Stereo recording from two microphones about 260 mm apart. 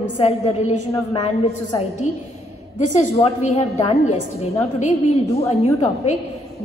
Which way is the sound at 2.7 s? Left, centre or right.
Left.